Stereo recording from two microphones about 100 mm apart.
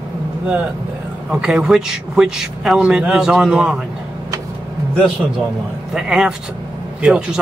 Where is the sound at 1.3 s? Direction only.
5° right (ahead or behind).